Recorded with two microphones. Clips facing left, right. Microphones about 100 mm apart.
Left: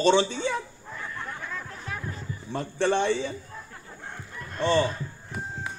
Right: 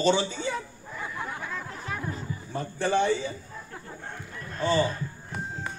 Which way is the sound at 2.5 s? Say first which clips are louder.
Left 3 dB; 65° left (ahead or behind).